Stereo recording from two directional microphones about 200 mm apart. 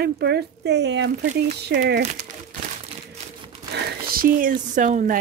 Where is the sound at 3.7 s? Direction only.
45° right (ahead or behind).